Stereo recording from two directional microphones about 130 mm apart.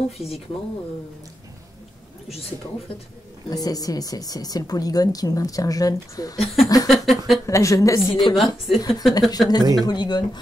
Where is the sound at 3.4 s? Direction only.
30° left (ahead or behind).